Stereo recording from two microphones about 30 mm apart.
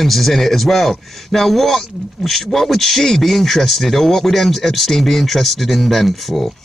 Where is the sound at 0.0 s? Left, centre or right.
Centre.